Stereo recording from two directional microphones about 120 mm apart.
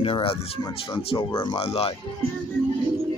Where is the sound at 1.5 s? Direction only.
55° left (ahead or behind).